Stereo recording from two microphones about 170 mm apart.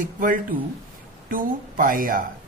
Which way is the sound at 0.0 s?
55° right (ahead or behind).